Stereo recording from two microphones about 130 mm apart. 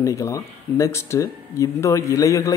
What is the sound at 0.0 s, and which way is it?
Speech, 20° left (ahead or behind).